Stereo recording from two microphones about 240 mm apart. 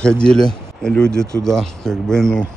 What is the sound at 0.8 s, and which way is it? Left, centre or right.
Speech, centre.